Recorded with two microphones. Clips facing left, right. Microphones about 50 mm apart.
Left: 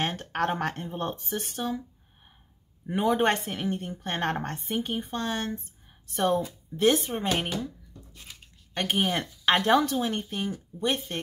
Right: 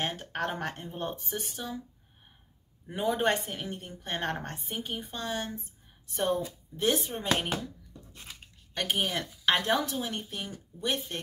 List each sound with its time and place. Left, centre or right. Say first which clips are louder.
0.0 s speech: left 4 dB; left
2.9 s a woman's voice: left 4 dB; left
8.7 s a woman's voice: left 4 dB; left